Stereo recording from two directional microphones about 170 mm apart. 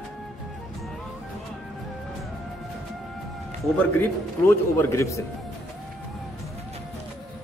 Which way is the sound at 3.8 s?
10° left (ahead or behind).